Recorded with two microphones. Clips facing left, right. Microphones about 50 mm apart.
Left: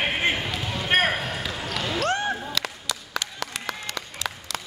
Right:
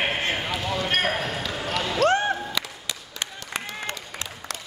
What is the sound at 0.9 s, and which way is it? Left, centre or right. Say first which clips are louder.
Basketball bounce: left 5 dB; centre.